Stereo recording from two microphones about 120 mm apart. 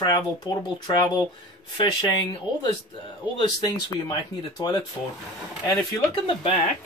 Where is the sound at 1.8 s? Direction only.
40° left (ahead or behind).